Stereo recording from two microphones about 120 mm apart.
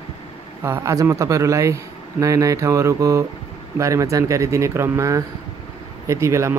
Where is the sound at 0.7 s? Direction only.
25° right (ahead or behind).